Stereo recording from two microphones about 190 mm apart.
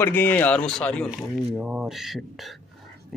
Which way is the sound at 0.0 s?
10° left (ahead or behind).